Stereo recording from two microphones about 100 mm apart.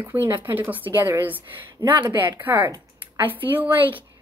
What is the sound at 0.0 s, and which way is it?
A woman's voice, 20° right (ahead or behind).